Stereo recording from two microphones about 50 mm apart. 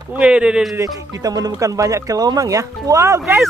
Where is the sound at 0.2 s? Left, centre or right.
Right.